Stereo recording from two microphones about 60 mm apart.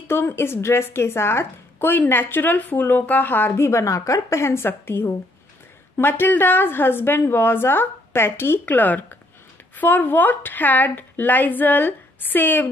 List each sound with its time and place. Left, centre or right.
0.1 s a woman's voice: left
3.6 s a woman's voice: left